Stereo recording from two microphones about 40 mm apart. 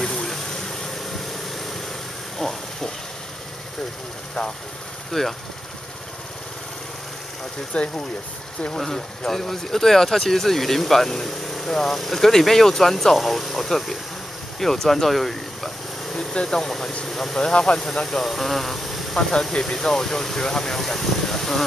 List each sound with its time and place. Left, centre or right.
0.0 s vehicle: centre
2.3 s a sound: centre
4.4 s speech: centre
7.7 s speech: left
8.7 s speech: centre
14.6 s vehicle: centre
16.2 s speech: centre
17.4 s speech: left
18.0 s speech: centre